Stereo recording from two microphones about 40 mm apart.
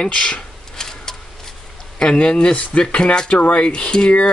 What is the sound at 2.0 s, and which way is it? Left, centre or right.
Speech, left.